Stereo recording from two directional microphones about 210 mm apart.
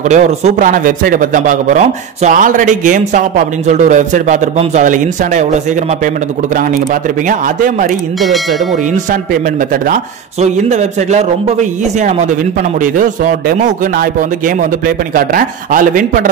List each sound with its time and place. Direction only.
0.1 s speech: 35° right (ahead or behind)
10.4 s speech: 35° right (ahead or behind)